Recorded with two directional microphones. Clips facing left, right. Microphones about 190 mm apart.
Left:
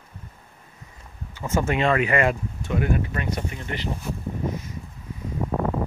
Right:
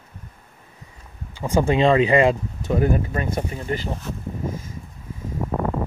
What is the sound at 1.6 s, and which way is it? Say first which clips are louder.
Speech: right 6 dB; 30° right (ahead or behind).